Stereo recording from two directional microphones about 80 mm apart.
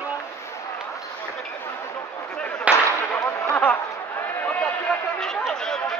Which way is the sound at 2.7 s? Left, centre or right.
Centre.